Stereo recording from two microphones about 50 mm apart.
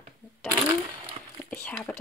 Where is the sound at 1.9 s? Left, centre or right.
Left.